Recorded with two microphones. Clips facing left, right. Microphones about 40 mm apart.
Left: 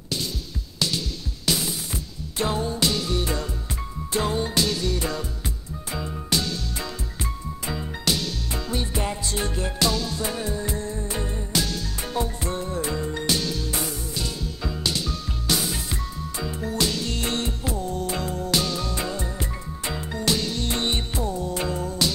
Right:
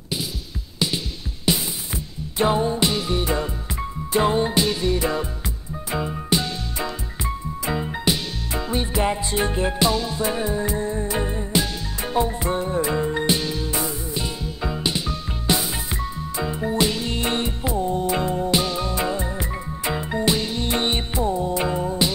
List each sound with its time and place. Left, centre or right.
0.7 s music: right